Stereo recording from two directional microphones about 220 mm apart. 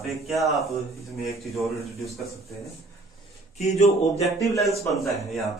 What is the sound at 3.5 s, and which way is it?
Speech, 30° left (ahead or behind).